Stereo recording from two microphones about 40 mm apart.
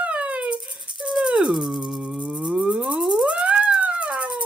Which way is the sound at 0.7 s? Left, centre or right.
Centre.